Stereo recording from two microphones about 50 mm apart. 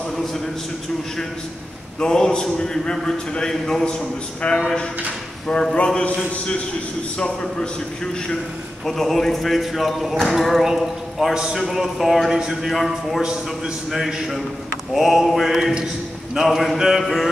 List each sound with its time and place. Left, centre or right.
2.0 s a man's voice: centre
4.4 s a man's voice: left
8.8 s speech: centre
11.3 s a man's voice: centre